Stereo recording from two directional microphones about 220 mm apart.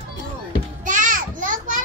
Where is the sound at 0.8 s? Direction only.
35° right (ahead or behind).